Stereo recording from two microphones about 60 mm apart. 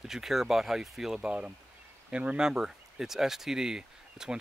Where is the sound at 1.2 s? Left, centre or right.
Centre.